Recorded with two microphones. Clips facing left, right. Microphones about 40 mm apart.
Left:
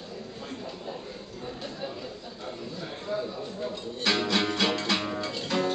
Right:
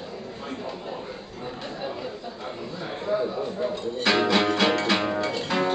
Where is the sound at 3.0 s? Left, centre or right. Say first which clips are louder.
Right 7 dB; right.